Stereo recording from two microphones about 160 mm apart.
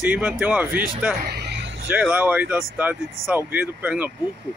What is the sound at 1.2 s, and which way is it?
Vehicle, 85° right.